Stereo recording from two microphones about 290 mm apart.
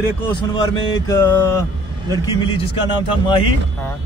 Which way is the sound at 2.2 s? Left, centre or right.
Centre.